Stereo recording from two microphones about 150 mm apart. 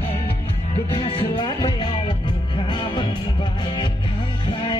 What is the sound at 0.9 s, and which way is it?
Music, 35° left (ahead or behind).